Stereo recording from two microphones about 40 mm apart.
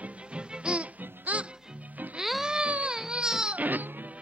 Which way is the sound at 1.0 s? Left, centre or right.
Right.